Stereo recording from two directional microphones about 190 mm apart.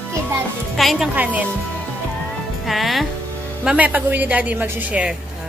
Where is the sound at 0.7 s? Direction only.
Centre (ahead or behind).